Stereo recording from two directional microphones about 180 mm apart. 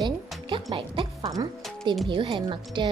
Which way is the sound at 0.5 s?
30° right (ahead or behind).